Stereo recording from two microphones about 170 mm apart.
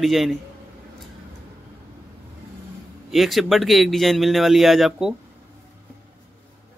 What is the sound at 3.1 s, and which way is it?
A man's voice, centre (ahead or behind).